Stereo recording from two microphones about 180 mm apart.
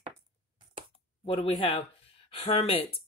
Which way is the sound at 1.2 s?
30° left (ahead or behind).